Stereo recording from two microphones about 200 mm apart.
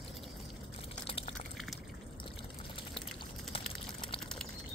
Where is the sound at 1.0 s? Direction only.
30° left (ahead or behind).